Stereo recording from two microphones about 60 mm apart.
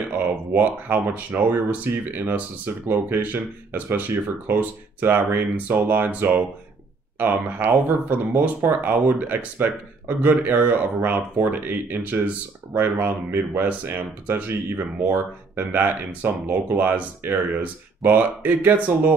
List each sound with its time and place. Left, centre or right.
0.1 s speech: right